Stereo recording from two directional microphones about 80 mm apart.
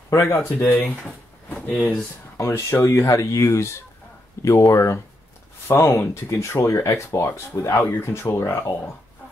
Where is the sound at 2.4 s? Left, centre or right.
Left.